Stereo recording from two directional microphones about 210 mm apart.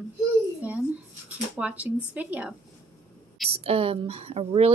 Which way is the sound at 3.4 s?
30° right (ahead or behind).